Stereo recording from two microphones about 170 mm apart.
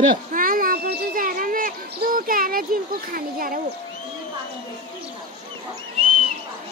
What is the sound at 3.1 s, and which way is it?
Speech, 55° right (ahead or behind).